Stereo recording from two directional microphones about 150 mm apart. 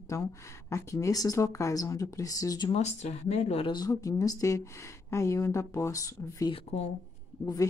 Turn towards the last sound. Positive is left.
turn(degrees=25)  # may be behind; listen again after turning